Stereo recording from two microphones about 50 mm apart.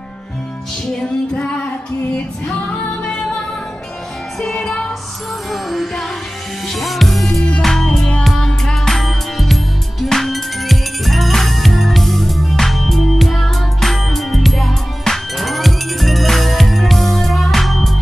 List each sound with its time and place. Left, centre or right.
0.8 s music: centre
2.7 s music: centre